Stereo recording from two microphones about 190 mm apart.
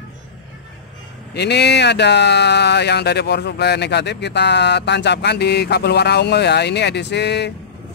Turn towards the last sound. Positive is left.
turn(degrees=60)  # may be behind; listen again after turning